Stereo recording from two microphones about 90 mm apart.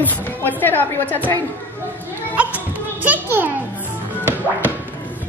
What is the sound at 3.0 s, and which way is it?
Speech, 20° right (ahead or behind).